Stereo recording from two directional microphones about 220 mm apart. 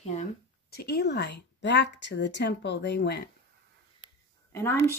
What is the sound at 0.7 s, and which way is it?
A woman's voice, 45° left (ahead or behind).